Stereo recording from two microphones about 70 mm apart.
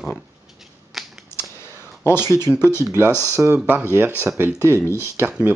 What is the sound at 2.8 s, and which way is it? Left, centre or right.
Speech, right.